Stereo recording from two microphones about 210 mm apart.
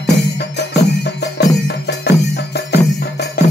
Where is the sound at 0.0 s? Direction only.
55° left (ahead or behind).